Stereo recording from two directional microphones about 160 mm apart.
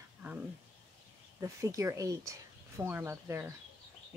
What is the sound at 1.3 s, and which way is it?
Speech, 20° right (ahead or behind).